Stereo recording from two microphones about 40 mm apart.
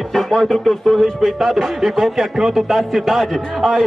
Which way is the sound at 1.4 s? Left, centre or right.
Centre.